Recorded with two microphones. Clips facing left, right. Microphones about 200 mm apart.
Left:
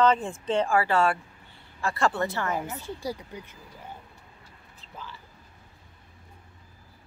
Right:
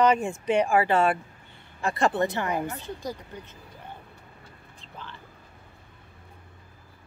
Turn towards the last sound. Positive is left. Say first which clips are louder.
# even
turn(degrees=5)  # may be behind; listen again after turning